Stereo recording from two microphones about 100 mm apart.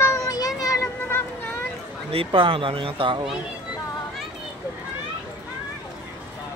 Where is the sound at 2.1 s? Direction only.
60° right (ahead or behind).